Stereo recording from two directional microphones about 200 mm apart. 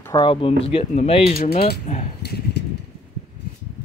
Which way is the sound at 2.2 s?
55° left (ahead or behind).